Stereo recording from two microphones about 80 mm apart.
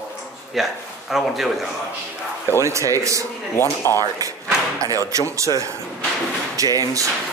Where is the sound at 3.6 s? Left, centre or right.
Left.